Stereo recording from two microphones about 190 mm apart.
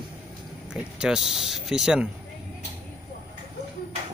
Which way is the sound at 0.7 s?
5° right (ahead or behind).